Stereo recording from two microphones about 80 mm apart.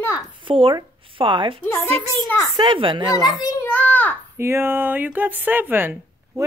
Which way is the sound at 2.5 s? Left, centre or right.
Right.